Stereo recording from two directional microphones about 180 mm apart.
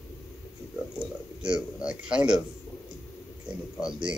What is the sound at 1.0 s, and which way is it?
Speech, 5° right (ahead or behind).